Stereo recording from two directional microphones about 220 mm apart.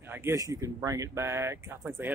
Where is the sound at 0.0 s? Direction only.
10° right (ahead or behind).